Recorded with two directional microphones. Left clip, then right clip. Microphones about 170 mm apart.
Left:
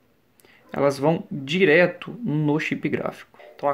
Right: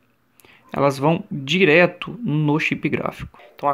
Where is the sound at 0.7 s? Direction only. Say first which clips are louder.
Right 2 dB; 25° right (ahead or behind).